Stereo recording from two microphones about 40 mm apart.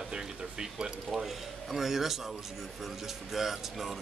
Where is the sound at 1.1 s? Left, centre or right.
Centre.